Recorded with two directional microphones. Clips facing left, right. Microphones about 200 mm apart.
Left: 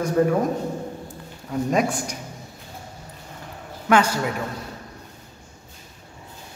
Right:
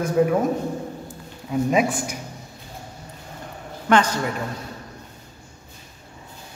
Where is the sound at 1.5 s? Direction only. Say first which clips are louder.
Right 2 dB; 5° right (ahead or behind).